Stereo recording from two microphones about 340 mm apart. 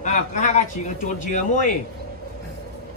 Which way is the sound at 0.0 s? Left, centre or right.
Left.